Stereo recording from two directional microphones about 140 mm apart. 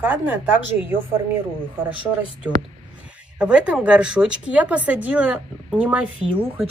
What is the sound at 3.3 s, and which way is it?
Speech, 5° right (ahead or behind).